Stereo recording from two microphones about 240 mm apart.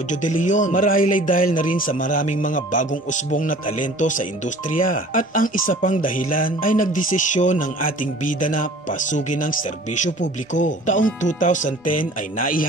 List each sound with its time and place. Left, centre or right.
0.1 s speech: left